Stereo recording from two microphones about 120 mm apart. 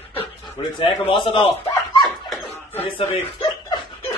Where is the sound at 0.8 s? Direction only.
45° left (ahead or behind).